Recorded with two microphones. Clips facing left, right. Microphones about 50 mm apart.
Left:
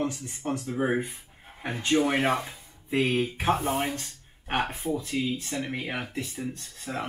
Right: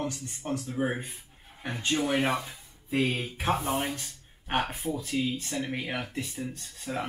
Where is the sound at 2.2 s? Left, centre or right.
Left.